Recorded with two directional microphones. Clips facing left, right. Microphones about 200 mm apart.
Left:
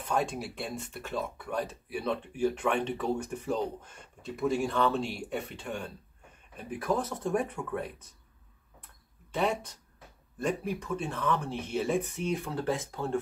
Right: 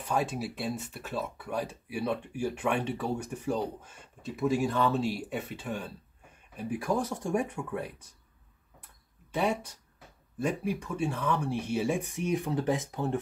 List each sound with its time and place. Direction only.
0.0 s speech: 5° right (ahead or behind)
9.3 s speech: 10° right (ahead or behind)